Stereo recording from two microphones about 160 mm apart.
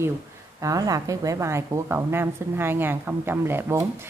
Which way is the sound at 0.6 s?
20° right (ahead or behind).